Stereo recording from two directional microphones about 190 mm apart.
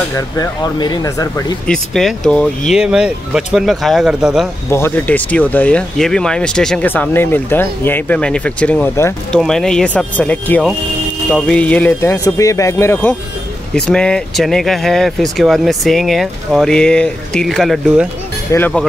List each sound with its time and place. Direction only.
0.1 s speech: 20° left (ahead or behind)
1.7 s speech: centre (ahead or behind)
4.6 s speech: 10° left (ahead or behind)
9.4 s speech: centre (ahead or behind)
18.5 s speech: 15° left (ahead or behind)